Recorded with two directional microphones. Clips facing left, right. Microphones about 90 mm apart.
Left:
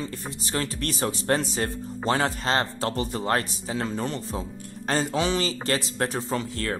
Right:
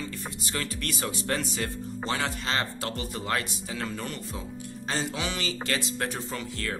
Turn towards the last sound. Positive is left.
turn(degrees=40)  # may be behind; listen again after turning